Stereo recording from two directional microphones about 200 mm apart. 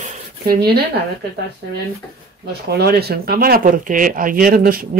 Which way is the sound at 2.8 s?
50° right (ahead or behind).